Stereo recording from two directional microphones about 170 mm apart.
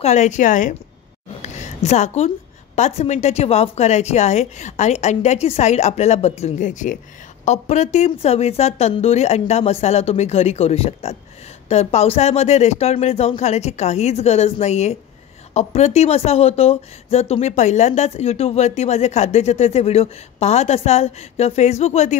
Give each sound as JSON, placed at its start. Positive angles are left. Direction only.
{"t": 0.0, "sound": "speech", "side_deg": 45}